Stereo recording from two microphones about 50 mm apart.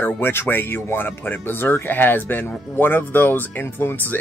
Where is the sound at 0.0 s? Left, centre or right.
Left.